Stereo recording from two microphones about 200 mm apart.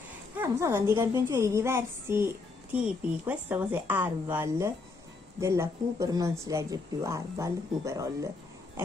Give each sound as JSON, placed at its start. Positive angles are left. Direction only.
{"t": 0.4, "sound": "a woman's voice", "side_deg": -15}